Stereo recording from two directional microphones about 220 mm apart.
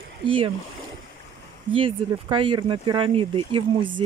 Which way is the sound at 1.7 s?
25° right (ahead or behind).